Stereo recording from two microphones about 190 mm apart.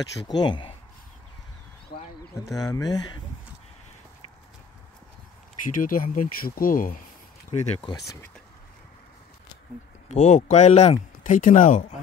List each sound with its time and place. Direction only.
0.3 s speech: 25° left (ahead or behind)
1.9 s a sound: 55° left (ahead or behind)
2.4 s speech: 15° left (ahead or behind)
5.7 s speech: 45° left (ahead or behind)
7.5 s speech: 35° left (ahead or behind)
10.0 s speech: 40° left (ahead or behind)